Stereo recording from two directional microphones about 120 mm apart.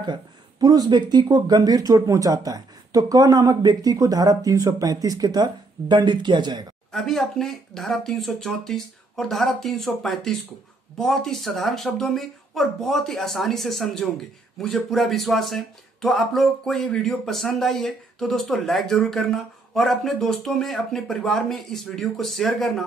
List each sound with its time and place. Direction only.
0.0 s speech: 35° right (ahead or behind)
6.9 s speech: centre (ahead or behind)